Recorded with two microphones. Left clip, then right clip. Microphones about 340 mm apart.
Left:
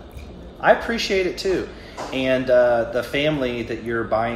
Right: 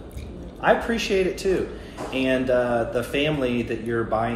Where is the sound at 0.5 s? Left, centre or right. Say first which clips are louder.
Left 3 dB; left.